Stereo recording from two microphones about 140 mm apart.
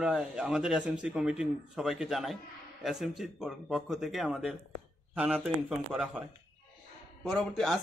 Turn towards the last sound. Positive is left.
turn(degrees=0)  # may be behind; listen again after turning